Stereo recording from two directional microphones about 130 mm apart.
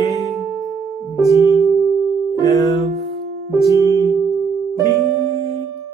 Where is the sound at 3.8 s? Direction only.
25° left (ahead or behind).